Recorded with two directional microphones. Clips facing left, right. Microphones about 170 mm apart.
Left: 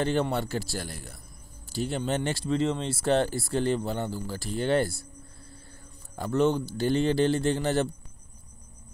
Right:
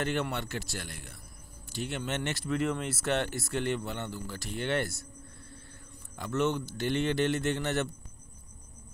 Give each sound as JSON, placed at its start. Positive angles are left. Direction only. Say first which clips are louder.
{"t": 0.0, "sound": "speech", "louder": "left 5 dB", "side_deg": 30}
{"t": 6.1, "sound": "speech", "louder": "left 5 dB", "side_deg": 35}